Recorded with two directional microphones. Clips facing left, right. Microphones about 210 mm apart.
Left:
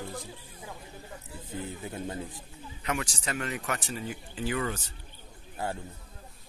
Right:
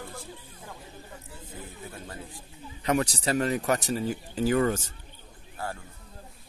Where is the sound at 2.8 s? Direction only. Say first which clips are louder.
Right 7 dB; 35° right (ahead or behind).